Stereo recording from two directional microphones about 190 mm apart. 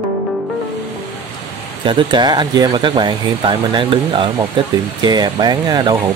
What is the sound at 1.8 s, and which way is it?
Speech, 25° right (ahead or behind).